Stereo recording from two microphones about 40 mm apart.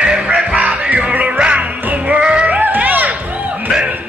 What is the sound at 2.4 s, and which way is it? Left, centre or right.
Music, right.